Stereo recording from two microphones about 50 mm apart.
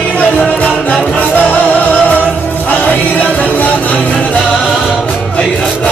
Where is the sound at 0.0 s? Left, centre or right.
Left.